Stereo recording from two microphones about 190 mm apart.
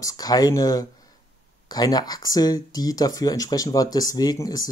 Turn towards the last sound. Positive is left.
turn(degrees=20)  # may be behind; listen again after turning